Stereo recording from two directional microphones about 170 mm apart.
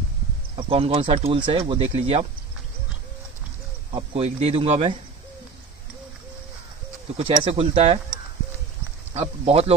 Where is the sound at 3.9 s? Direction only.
35° right (ahead or behind).